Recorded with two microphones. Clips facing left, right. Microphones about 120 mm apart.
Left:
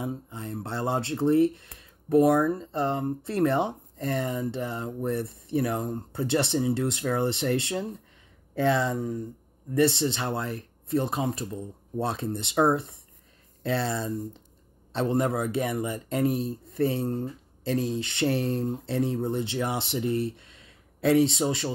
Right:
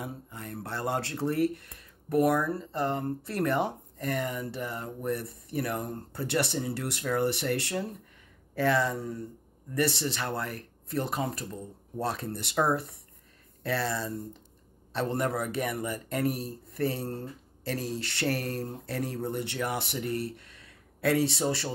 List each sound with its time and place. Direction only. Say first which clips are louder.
0.0 s a man's voice: left 6 dB; 20° left (ahead or behind)